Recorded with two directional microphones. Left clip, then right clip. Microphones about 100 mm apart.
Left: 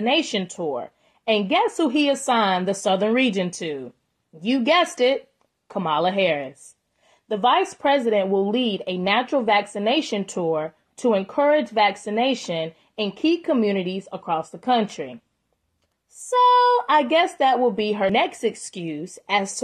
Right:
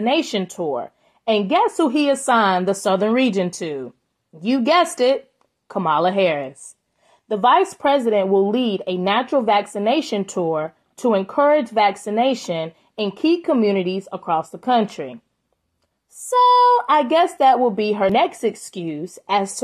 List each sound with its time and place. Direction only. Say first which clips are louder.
0.0 s a woman's voice: right 2 dB; 25° right (ahead or behind)
16.3 s a woman's voice: right 3 dB; 25° right (ahead or behind)